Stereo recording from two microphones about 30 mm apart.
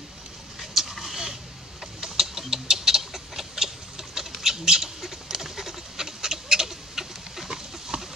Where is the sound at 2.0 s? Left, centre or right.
Centre.